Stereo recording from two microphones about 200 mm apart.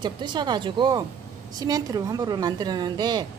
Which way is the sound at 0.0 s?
20° right (ahead or behind).